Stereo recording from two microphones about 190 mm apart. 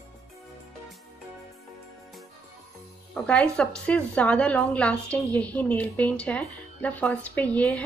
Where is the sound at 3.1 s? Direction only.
5° left (ahead or behind).